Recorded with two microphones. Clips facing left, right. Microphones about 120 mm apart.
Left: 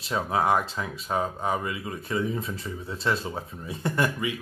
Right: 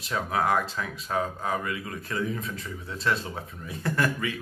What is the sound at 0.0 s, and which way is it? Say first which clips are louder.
Speech: left 2 dB; 25° left (ahead or behind).